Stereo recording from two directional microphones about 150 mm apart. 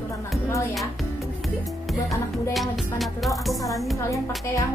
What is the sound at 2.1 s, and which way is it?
Music, centre (ahead or behind).